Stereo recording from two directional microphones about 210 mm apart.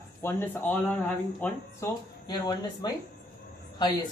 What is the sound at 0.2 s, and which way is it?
A man's voice, 10° left (ahead or behind).